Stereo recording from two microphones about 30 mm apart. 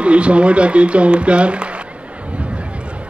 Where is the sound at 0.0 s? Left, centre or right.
Right.